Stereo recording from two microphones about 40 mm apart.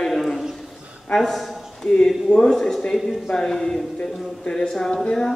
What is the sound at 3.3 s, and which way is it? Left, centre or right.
A man's voice, centre.